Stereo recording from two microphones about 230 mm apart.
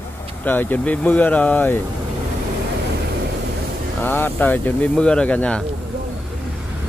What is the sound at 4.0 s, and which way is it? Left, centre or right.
Speech, centre.